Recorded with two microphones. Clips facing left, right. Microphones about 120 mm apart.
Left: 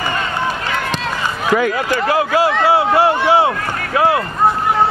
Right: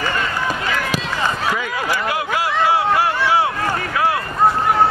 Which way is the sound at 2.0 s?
30° left (ahead or behind).